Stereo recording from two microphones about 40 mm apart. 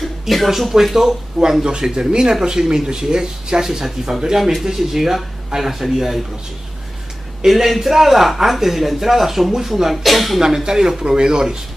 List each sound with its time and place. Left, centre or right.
0.2 s speech: centre
7.4 s speech: centre
10.4 s speech: centre